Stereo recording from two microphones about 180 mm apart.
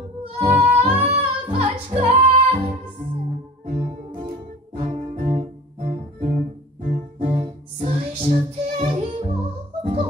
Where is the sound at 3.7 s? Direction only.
55° right (ahead or behind).